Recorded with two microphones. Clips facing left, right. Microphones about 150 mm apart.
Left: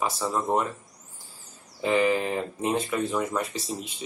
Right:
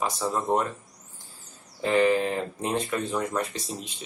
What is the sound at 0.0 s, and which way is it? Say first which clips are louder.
Speech: even; 5° left (ahead or behind).